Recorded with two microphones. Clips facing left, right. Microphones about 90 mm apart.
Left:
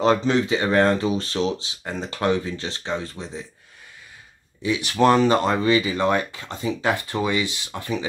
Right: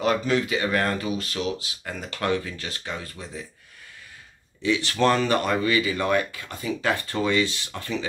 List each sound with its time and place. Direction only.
0.0 s speech: 30° left (ahead or behind)
4.6 s speech: 15° left (ahead or behind)